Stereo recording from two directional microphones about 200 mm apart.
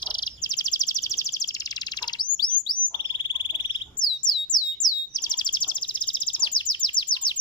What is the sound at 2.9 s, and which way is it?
Frog, 25° left (ahead or behind).